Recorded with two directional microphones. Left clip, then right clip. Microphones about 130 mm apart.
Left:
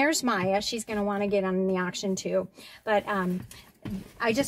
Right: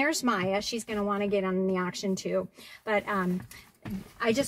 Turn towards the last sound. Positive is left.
turn(degrees=-10)  # may be behind; listen again after turning